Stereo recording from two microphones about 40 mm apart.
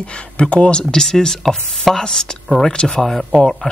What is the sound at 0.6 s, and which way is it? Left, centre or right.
Speech, left.